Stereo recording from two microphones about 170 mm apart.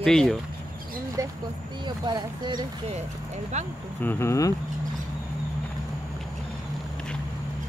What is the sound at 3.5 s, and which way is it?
Speech, 40° right (ahead or behind).